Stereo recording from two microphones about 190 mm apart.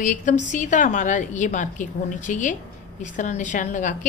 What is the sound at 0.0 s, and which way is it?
A woman's voice, 40° left (ahead or behind).